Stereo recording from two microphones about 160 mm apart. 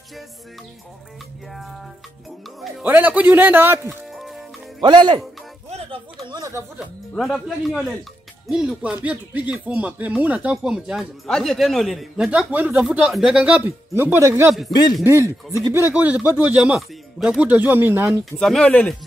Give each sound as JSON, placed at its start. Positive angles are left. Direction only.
{"t": 2.8, "sound": "speech", "side_deg": -10}
{"t": 4.1, "sound": "music", "side_deg": 0}
{"t": 4.8, "sound": "speech", "side_deg": -30}
{"t": 5.7, "sound": "a sound", "side_deg": -35}
{"t": 7.2, "sound": "a man's voice", "side_deg": 0}
{"t": 18.4, "sound": "speech", "side_deg": 5}